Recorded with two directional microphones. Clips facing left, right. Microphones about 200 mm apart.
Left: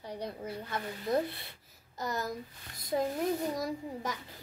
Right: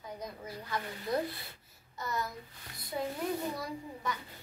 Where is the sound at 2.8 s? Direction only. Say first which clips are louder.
Left 5 dB; 40° left (ahead or behind).